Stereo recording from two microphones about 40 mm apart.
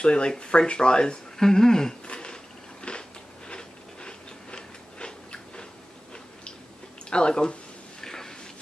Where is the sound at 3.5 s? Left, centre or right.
Left.